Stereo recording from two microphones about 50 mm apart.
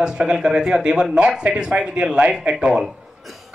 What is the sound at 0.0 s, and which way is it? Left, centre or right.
Speech, centre.